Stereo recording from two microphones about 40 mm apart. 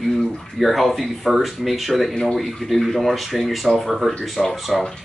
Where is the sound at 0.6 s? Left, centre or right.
Centre.